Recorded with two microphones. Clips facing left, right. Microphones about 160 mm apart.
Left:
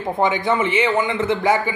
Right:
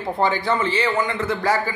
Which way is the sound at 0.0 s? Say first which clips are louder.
Left 2 dB; 20° left (ahead or behind).